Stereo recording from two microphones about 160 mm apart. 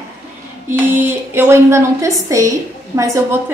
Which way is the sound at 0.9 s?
15° right (ahead or behind).